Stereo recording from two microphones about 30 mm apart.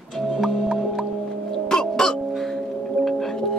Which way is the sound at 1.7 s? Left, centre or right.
Left.